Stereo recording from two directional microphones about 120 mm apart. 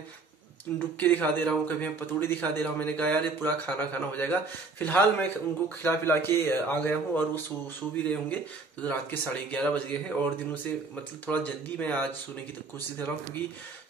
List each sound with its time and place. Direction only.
0.9 s a man's voice: 15° left (ahead or behind)